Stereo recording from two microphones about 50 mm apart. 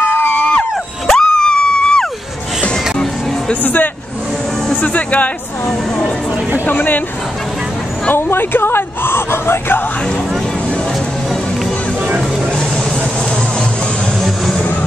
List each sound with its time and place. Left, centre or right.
1.0 s a sound: centre
2.7 s music: centre
3.6 s speech: left
8.1 s speech: left